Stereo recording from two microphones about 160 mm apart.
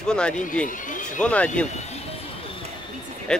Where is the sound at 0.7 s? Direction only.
55° left (ahead or behind).